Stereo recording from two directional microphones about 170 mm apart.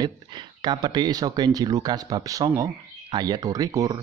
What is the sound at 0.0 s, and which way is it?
Speech, 25° right (ahead or behind).